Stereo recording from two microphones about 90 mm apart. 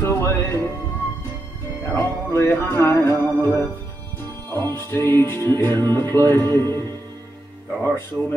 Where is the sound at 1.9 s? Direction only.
30° left (ahead or behind).